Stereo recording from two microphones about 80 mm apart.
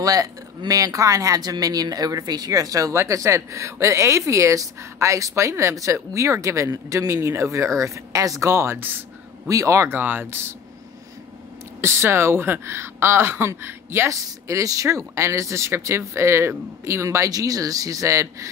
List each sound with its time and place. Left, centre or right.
0.0 s speech: right
9.5 s speech: right
11.8 s speech: right